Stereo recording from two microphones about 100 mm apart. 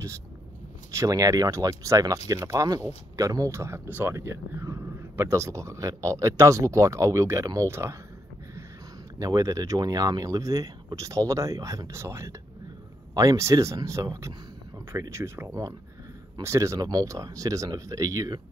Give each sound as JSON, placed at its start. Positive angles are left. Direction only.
{"t": 0.9, "sound": "speech", "side_deg": -35}
{"t": 9.2, "sound": "speech", "side_deg": -35}